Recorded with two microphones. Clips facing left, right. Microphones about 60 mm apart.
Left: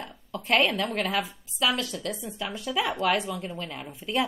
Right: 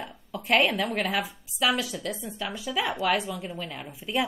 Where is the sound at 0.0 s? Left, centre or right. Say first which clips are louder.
Even; centre.